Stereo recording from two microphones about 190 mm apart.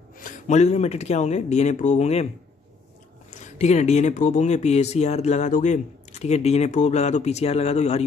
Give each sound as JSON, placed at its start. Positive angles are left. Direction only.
{"t": 0.2, "sound": "speech", "side_deg": 40}
{"t": 3.3, "sound": "speech", "side_deg": 40}